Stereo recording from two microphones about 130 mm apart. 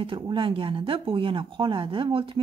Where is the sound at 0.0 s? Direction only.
40° right (ahead or behind).